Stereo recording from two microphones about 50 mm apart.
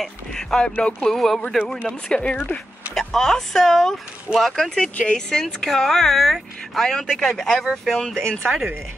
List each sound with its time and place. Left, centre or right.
0.0 s speech: centre
2.9 s speech: centre
8.1 s speech: centre